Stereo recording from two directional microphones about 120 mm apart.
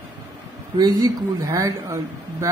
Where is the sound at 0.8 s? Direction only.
30° right (ahead or behind).